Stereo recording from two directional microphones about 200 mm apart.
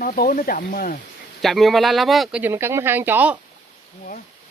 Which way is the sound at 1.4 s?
Centre (ahead or behind).